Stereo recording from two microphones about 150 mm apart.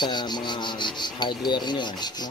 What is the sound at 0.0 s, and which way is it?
Insect, 30° left (ahead or behind).